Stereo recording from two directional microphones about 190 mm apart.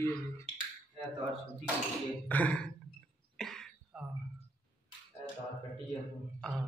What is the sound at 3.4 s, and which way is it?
Cough, centre (ahead or behind).